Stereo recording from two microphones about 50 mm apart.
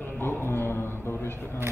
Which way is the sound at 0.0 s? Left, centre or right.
Left.